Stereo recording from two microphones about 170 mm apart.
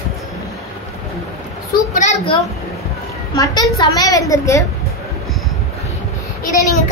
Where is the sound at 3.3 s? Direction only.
20° left (ahead or behind).